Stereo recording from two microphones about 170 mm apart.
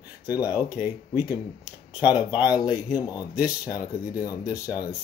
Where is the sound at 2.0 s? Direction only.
25° left (ahead or behind).